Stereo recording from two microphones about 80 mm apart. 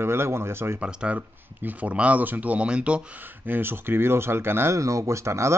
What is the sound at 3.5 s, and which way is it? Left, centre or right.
Speech, right.